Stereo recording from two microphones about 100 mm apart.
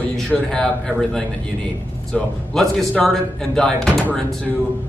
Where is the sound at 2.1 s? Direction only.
5° left (ahead or behind).